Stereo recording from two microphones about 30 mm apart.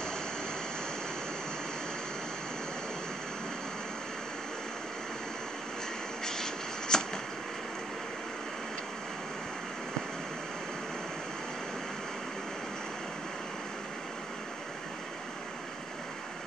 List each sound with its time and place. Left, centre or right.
6.2 s shuffle: centre